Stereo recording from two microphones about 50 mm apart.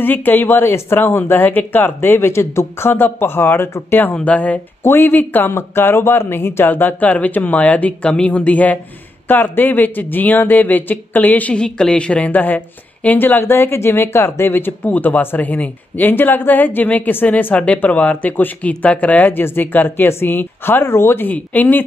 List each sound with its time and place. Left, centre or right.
0.0 s speech: left
4.1 s speech: left
4.8 s speech: left
5.5 s speech: left
6.7 s speech: left
8.3 s speech: left
11.5 s speech: centre
12.3 s speech: left
13.2 s speech: left
14.8 s speech: left
17.6 s speech: left
19.4 s speech: left
21.3 s speech: left